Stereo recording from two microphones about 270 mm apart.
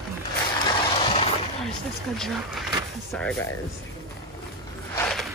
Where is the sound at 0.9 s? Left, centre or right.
Left.